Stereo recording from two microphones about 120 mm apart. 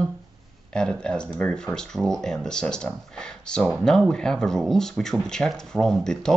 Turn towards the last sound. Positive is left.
turn(degrees=5)  # may be behind; listen again after turning